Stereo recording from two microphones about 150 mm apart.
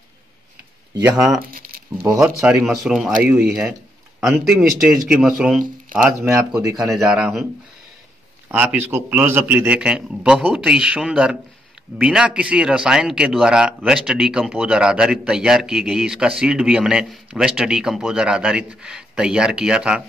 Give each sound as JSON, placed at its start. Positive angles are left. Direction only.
{"t": 1.0, "sound": "a man's voice", "side_deg": -5}
{"t": 4.2, "sound": "a man's voice", "side_deg": -5}
{"t": 5.6, "sound": "speech", "side_deg": -65}
{"t": 6.7, "sound": "a man's voice", "side_deg": -5}
{"t": 8.5, "sound": "a man's voice", "side_deg": -15}